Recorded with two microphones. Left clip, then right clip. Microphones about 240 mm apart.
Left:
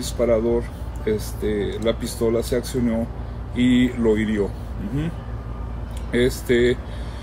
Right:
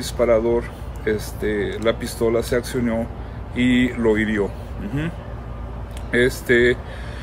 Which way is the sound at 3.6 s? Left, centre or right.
Right.